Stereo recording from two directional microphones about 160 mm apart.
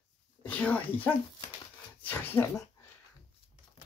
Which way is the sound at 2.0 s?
10° left (ahead or behind).